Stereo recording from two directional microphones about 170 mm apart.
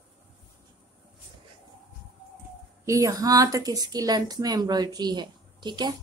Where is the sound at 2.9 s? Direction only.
20° right (ahead or behind).